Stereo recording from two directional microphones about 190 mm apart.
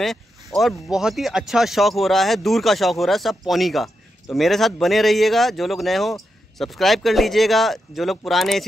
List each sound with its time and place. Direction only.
0.0 s speech: centre (ahead or behind)